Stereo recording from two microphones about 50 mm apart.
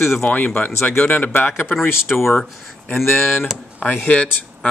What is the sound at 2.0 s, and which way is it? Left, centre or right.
Speech, centre.